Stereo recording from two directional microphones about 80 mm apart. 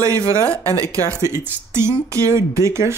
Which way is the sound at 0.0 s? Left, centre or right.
Right.